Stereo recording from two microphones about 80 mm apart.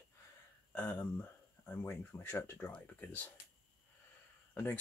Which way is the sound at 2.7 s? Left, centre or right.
Left.